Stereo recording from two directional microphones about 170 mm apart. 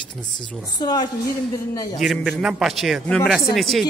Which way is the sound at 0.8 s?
25° left (ahead or behind).